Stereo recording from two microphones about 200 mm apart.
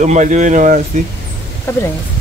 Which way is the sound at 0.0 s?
35° right (ahead or behind).